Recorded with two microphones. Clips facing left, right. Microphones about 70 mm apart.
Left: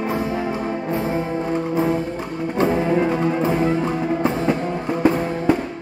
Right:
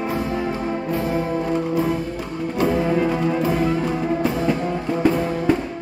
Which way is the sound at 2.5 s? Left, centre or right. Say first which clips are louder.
Left 1 dB; left.